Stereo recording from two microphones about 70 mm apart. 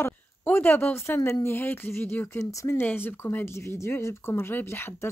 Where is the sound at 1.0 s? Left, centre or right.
Left.